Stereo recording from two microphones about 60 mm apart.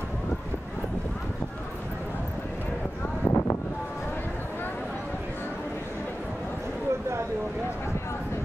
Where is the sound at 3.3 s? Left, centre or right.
Left.